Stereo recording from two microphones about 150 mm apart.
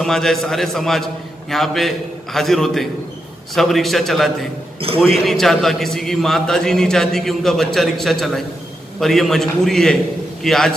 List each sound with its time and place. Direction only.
0.0 s a man's voice: 5° left (ahead or behind)
4.7 s a man's voice: 40° right (ahead or behind)
5.2 s a man's voice: centre (ahead or behind)